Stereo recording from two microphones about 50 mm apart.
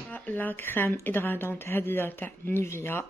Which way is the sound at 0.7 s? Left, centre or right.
Left.